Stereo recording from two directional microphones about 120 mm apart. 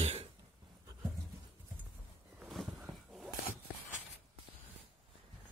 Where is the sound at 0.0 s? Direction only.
60° right (ahead or behind).